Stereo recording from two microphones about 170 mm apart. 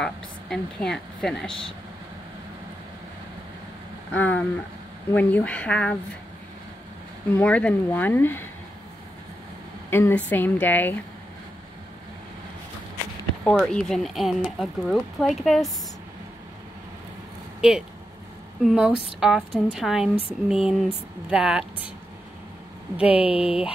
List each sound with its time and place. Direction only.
0.0 s speech: 5° left (ahead or behind)
4.1 s speech: 10° left (ahead or behind)
7.3 s speech: 5° left (ahead or behind)
9.8 s speech: 15° left (ahead or behind)
13.4 s speech: 5° left (ahead or behind)
17.6 s speech: 5° right (ahead or behind)
23.0 s speech: 35° left (ahead or behind)